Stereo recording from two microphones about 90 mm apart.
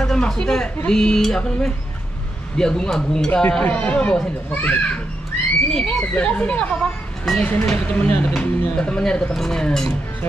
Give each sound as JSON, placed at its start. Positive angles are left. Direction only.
{"t": 0.0, "sound": "speech", "side_deg": 5}
{"t": 3.4, "sound": "speech", "side_deg": 15}
{"t": 5.7, "sound": "speech", "side_deg": 5}